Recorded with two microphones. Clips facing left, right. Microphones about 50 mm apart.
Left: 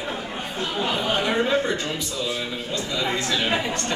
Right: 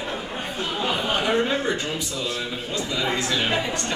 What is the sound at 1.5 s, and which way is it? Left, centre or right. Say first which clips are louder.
Speech: left 2 dB; centre.